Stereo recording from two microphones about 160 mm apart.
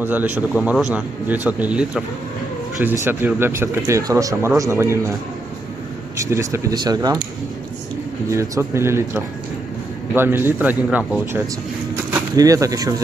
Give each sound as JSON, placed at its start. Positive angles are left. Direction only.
{"t": 0.0, "sound": "speech", "side_deg": -10}
{"t": 6.1, "sound": "speech", "side_deg": -20}
{"t": 8.3, "sound": "speech", "side_deg": -15}
{"t": 11.9, "sound": "a sound", "side_deg": -20}